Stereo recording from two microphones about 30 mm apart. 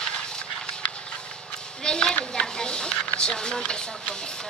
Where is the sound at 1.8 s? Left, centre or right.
Left.